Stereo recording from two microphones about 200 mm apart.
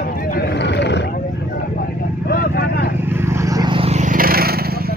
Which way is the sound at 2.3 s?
50° left (ahead or behind).